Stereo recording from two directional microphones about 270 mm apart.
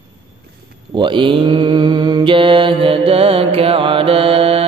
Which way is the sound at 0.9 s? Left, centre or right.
Centre.